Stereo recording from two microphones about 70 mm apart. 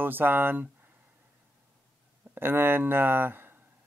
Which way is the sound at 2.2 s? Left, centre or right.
Right.